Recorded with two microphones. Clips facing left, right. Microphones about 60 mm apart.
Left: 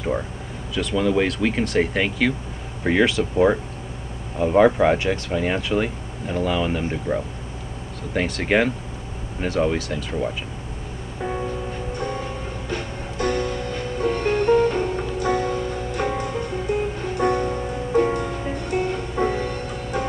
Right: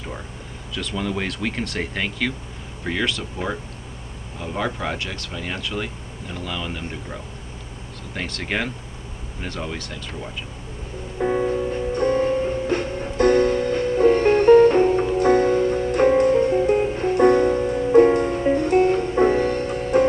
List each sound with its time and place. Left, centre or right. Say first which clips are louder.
0.7 s speech: left 6 dB; centre
2.8 s speech: left 6 dB; centre
11.1 s music: right 6 dB; centre
12.0 s music: right 12 dB; right